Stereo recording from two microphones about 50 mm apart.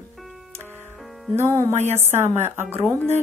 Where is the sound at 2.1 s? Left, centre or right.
Right.